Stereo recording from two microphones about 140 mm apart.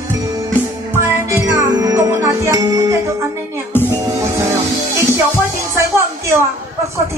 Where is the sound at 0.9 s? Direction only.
15° right (ahead or behind).